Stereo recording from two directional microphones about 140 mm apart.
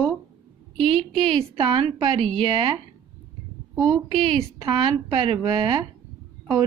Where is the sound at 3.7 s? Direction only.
Centre (ahead or behind).